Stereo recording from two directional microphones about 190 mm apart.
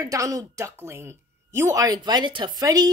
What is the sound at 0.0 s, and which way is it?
Speech, 15° right (ahead or behind).